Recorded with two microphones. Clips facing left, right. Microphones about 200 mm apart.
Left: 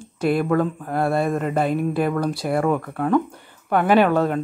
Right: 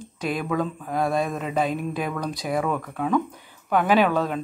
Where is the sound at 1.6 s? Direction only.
60° left (ahead or behind).